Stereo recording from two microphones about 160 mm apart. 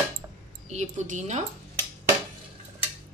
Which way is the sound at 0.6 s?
50° right (ahead or behind).